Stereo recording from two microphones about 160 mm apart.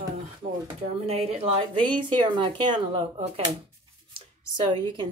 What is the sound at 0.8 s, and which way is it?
Speech, 40° right (ahead or behind).